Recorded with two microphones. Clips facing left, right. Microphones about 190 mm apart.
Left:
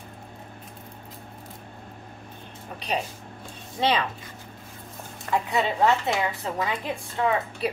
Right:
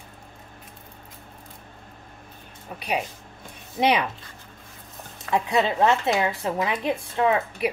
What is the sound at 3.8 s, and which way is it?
Speech, 15° right (ahead or behind).